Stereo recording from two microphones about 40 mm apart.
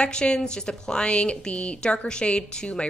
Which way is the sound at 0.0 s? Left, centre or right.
Left.